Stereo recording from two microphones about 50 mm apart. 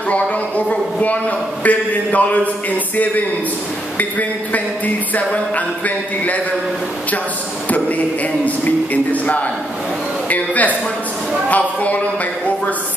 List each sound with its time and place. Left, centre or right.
0.1 s a woman's voice: left
4.0 s a man's voice: left
8.5 s a man's voice: left